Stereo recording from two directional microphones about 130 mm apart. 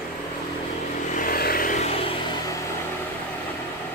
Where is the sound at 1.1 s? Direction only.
90° left.